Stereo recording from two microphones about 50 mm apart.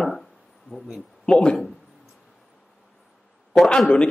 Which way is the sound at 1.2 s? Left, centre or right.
Left.